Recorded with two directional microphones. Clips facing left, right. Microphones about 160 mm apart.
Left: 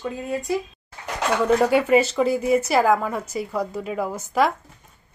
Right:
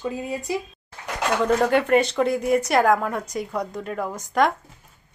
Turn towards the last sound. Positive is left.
turn(degrees=5)  # may be behind; listen again after turning